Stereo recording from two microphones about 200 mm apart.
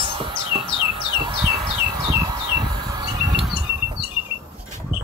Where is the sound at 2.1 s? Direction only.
15° right (ahead or behind).